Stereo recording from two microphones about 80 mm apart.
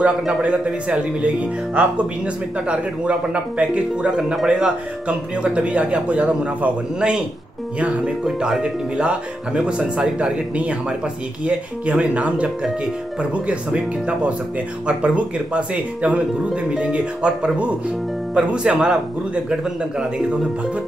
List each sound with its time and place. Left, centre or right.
0.0 s a man's voice: centre